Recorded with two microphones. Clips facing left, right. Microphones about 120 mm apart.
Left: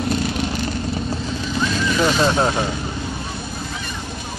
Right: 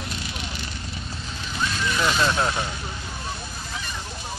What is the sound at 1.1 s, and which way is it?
Vehicle, 90° left.